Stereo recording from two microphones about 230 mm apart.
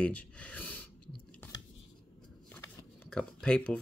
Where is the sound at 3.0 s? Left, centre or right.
Centre.